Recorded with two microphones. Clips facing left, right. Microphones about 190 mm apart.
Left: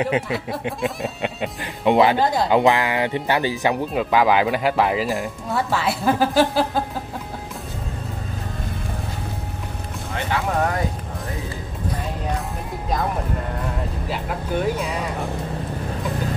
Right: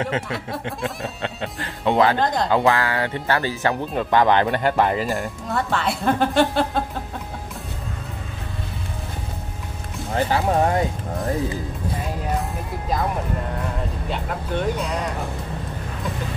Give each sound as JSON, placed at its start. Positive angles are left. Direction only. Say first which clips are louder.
{"t": 0.7, "sound": "speech", "louder": "left 4 dB", "side_deg": 15}
{"t": 2.5, "sound": "speech", "louder": "left 2 dB", "side_deg": 15}
{"t": 10.1, "sound": "speech", "louder": "right 4 dB", "side_deg": -30}
{"t": 13.6, "sound": "speech", "louder": "even", "side_deg": 5}